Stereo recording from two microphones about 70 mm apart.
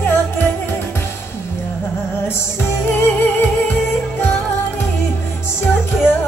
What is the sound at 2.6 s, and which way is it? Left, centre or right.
Music, left.